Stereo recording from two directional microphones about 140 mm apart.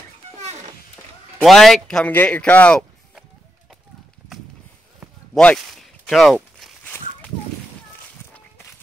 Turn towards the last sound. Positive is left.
turn(degrees=10)  # may be behind; listen again after turning